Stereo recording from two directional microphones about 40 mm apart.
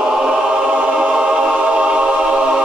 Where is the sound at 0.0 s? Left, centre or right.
Centre.